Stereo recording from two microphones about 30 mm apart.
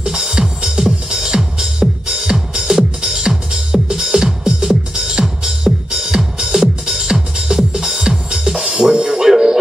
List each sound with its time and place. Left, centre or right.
0.0 s music: centre